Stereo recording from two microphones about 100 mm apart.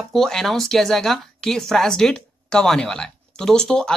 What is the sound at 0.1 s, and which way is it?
Speech, 5° left (ahead or behind).